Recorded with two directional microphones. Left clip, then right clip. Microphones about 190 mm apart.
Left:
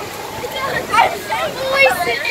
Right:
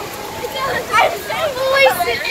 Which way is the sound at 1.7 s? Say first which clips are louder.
Left 1 dB; 45° right (ahead or behind).